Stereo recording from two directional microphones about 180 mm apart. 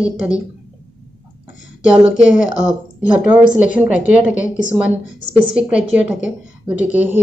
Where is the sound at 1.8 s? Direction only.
5° right (ahead or behind).